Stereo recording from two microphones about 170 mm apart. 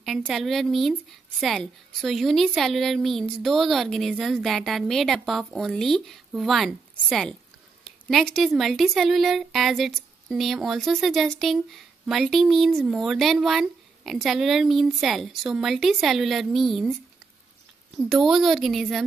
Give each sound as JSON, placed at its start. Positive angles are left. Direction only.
{"t": 0.0, "sound": "speech", "side_deg": 0}
{"t": 17.9, "sound": "speech", "side_deg": 0}